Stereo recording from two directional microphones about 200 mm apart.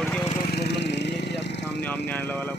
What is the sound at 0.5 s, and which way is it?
Speech, 60° left (ahead or behind).